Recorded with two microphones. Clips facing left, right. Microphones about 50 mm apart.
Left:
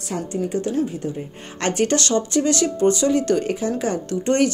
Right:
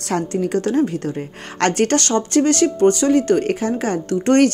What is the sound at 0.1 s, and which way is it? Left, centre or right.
A woman's voice, right.